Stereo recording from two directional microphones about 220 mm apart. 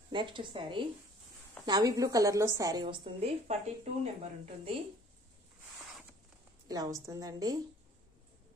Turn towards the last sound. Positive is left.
turn(degrees=-15)  # may be behind; listen again after turning